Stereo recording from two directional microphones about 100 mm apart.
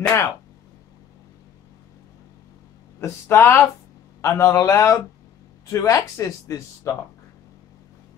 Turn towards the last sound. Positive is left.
turn(degrees=30)  # may be behind; listen again after turning